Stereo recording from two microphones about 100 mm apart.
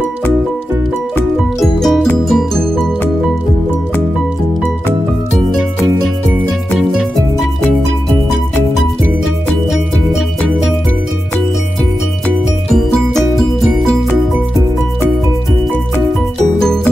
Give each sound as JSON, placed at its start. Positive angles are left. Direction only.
{"t": 1.6, "sound": "music", "side_deg": 0}
{"t": 6.8, "sound": "music", "side_deg": 0}
{"t": 9.7, "sound": "music", "side_deg": 0}
{"t": 12.6, "sound": "music", "side_deg": 5}
{"t": 16.6, "sound": "music", "side_deg": 5}